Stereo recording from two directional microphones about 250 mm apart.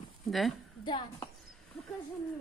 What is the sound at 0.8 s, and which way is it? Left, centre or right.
Speech, centre.